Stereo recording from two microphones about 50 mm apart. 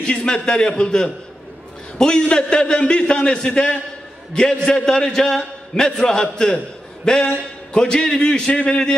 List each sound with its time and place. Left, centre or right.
0.0 s a man's voice: centre